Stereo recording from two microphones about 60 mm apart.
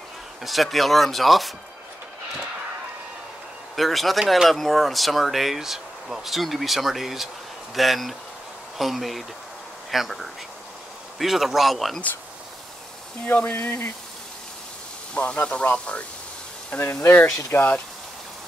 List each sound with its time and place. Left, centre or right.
0.4 s speech: centre
3.7 s speech: centre
13.2 s speech: left
15.1 s speech: centre
16.7 s speech: left